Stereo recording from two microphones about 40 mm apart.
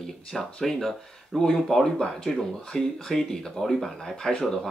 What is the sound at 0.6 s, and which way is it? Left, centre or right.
Speech, centre.